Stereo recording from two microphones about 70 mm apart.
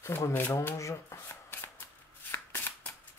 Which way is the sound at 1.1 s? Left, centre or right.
Left.